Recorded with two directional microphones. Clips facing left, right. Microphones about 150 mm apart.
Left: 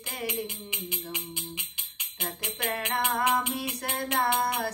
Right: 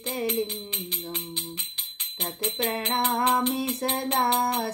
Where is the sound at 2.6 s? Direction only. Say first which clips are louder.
Right 3 dB; 25° right (ahead or behind).